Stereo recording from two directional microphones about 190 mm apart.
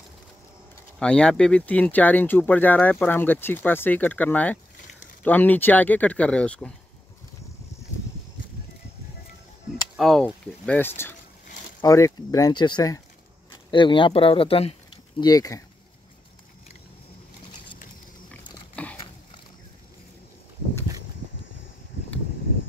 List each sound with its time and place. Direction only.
0.9 s speech: 5° left (ahead or behind)
9.9 s speech: centre (ahead or behind); by 15.2 s 30° left (ahead or behind)
15.2 s speech: 20° left (ahead or behind)
18.3 s dog: 5° left (ahead or behind)